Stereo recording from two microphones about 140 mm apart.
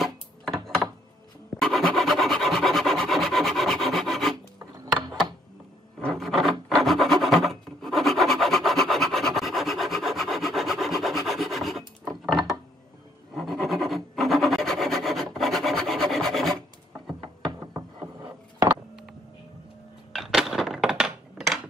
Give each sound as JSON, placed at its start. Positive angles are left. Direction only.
{"t": 0.0, "sound": "a sound", "side_deg": 0}
{"t": 1.6, "sound": "rub", "side_deg": 0}
{"t": 5.9, "sound": "filing", "side_deg": 0}
{"t": 13.4, "sound": "filing", "side_deg": 0}
{"t": 17.5, "sound": "a sound", "side_deg": -20}
{"t": 20.2, "sound": "crushing", "side_deg": 0}